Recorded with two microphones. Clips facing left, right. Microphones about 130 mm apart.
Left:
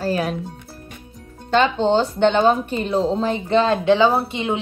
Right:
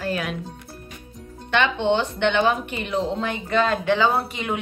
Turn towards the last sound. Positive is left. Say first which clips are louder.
# left 3 dB
turn(degrees=25)  # may be behind; listen again after turning